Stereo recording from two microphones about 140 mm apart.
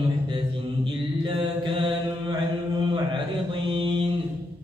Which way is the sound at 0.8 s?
35° right (ahead or behind).